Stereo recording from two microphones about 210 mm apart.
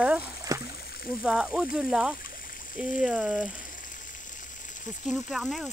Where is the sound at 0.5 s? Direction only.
15° right (ahead or behind).